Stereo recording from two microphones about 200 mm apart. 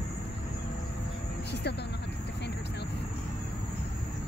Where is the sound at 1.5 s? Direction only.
55° left (ahead or behind).